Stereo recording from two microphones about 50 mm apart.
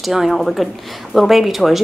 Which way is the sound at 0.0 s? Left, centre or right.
Centre.